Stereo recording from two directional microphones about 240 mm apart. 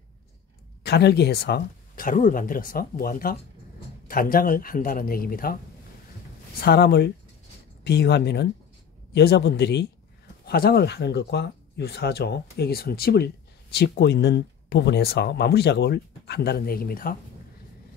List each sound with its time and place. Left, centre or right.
0.8 s speech: left
6.6 s speech: left